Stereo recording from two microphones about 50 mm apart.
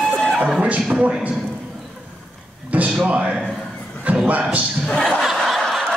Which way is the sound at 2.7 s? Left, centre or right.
Right.